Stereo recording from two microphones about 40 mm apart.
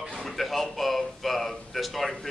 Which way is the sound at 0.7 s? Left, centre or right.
Centre.